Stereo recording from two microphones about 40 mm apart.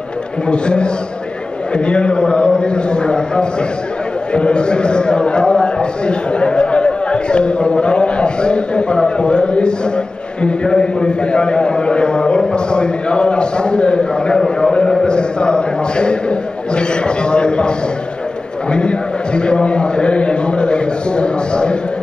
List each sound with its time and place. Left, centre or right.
0.5 s a man's voice: left